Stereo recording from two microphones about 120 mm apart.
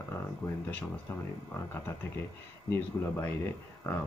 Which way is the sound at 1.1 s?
20° left (ahead or behind).